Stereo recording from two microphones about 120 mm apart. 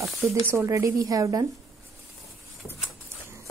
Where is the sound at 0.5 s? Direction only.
25° right (ahead or behind).